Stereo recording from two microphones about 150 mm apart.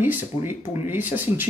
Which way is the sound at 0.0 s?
15° right (ahead or behind).